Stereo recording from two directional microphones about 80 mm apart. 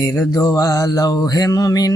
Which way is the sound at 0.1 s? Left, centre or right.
Left.